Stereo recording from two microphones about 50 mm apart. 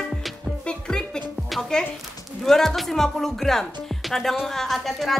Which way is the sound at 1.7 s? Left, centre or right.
Centre.